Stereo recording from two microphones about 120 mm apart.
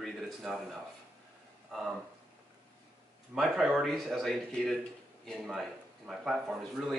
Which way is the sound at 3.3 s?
Centre (ahead or behind).